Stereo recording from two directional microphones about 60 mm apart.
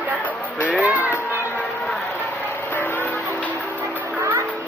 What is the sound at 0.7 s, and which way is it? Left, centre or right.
Music, right.